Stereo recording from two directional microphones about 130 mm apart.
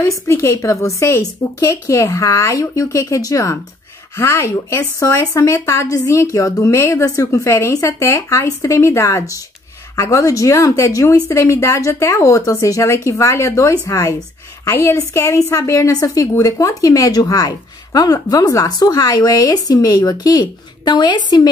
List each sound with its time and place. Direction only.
0.3 s a woman's voice: 20° left (ahead or behind)